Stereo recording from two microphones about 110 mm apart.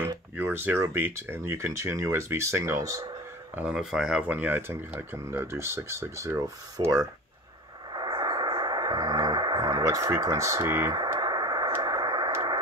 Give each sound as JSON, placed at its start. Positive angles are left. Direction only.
{"t": 0.4, "sound": "speech", "side_deg": -20}
{"t": 3.5, "sound": "speech", "side_deg": -5}
{"t": 7.9, "sound": "speech", "side_deg": -40}
{"t": 11.1, "sound": "a sound", "side_deg": -40}